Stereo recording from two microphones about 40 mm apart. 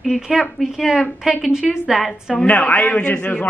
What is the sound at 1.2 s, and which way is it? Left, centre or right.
Speech, centre.